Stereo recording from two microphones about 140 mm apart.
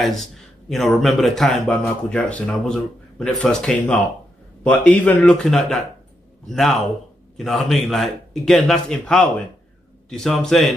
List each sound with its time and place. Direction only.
0.0 s a man's voice: centre (ahead or behind)